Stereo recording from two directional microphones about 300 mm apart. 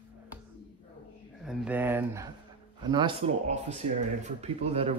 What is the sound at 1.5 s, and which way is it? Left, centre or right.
Speech, centre.